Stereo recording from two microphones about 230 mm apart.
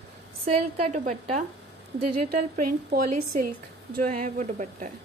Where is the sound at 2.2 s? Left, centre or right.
Right.